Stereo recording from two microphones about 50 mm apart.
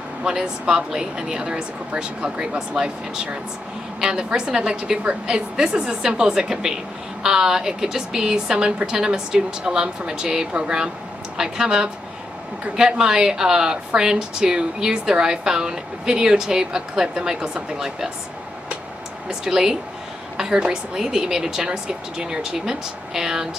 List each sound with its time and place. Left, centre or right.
0.2 s a woman's voice: centre
19.2 s a woman's voice: centre